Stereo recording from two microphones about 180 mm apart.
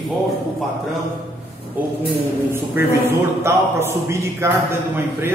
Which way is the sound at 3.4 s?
15° right (ahead or behind).